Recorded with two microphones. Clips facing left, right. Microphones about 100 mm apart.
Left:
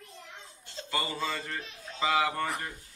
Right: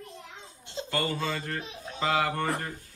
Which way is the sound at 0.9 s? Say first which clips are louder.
Right 2 dB; centre (ahead or behind).